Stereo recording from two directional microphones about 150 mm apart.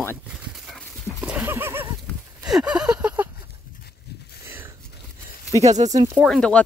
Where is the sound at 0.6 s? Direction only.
5° right (ahead or behind).